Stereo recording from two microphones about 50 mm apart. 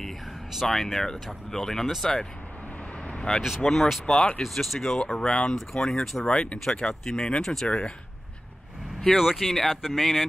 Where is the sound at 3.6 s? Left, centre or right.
Centre.